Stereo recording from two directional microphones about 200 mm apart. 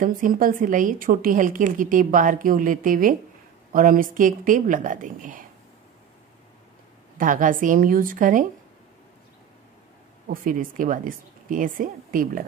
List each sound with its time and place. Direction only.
0.0 s a woman's voice: 45° right (ahead or behind)
7.2 s a woman's voice: 40° right (ahead or behind)
10.2 s a woman's voice: 45° right (ahead or behind)